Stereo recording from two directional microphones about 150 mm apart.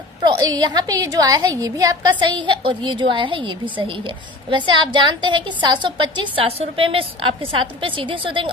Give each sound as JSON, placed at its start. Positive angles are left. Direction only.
{"t": 0.2, "sound": "a woman's voice", "side_deg": -30}